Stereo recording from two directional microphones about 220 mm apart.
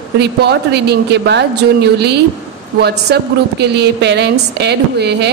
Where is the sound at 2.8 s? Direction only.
45° right (ahead or behind).